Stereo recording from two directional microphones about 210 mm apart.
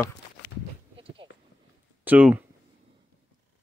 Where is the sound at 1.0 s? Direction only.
25° right (ahead or behind).